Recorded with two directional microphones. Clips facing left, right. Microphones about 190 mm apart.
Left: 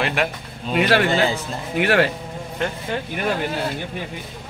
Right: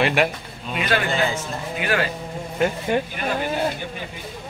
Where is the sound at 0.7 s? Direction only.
70° left (ahead or behind).